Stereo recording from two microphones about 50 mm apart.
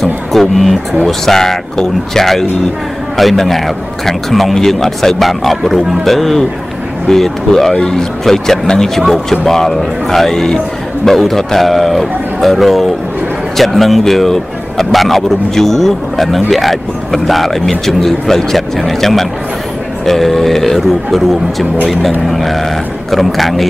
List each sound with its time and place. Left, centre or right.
0.0 s music: centre
1.0 s a man's voice: centre
7.7 s a man's voice: centre